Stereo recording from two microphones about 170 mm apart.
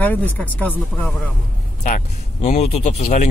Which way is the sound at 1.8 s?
45° left (ahead or behind).